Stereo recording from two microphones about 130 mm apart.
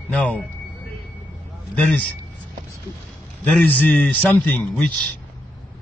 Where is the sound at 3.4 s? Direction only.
10° left (ahead or behind).